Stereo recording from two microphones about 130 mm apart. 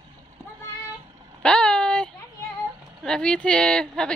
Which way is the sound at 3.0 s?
5° left (ahead or behind).